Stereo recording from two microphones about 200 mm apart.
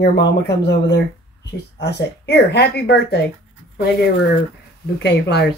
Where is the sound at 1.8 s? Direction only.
55° left (ahead or behind).